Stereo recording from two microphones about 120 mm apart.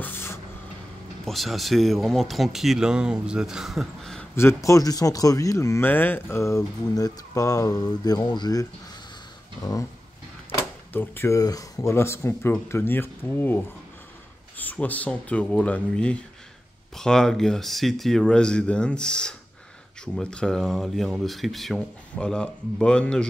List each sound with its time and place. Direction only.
0.0 s vehicle: 20° left (ahead or behind)
1.2 s speech: centre (ahead or behind)
4.6 s speech: 30° left (ahead or behind)
10.9 s speech: 15° left (ahead or behind)